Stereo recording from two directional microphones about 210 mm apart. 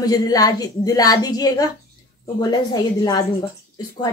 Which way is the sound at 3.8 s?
20° left (ahead or behind).